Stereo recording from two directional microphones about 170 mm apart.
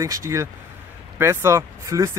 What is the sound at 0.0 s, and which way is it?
Speech, 20° right (ahead or behind).